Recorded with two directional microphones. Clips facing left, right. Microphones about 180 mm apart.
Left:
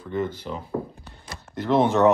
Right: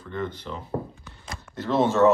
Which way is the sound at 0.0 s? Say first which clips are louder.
Left 4 dB; 10° left (ahead or behind).